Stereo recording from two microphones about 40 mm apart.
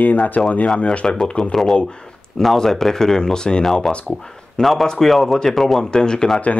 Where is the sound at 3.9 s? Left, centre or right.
Centre.